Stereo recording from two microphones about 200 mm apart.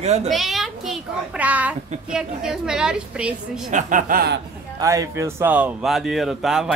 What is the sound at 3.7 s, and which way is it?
Speech, 45° right (ahead or behind).